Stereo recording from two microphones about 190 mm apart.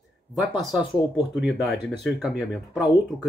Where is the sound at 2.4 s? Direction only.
5° right (ahead or behind).